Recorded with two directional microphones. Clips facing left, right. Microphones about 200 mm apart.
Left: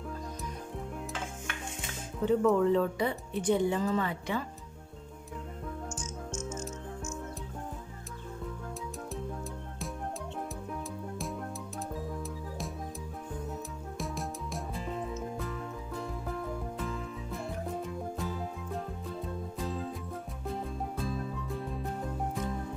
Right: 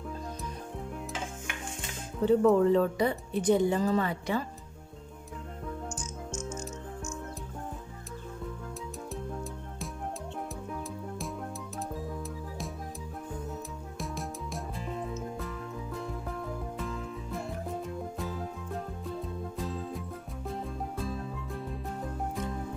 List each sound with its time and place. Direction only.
2.2 s speech: 35° right (ahead or behind)
10.7 s music: centre (ahead or behind)
13.9 s music: centre (ahead or behind)
21.0 s music: centre (ahead or behind)